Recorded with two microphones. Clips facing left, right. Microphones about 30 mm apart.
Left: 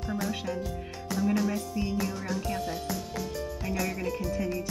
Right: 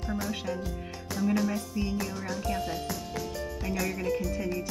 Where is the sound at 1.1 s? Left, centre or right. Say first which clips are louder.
Even; centre.